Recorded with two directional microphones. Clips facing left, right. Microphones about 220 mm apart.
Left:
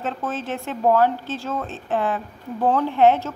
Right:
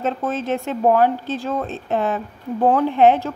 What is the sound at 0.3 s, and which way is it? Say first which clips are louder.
A woman's voice: right 5 dB; 20° right (ahead or behind).